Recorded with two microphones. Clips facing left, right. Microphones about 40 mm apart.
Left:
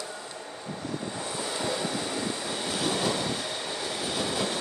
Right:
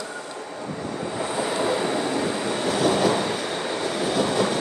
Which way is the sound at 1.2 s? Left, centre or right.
Right.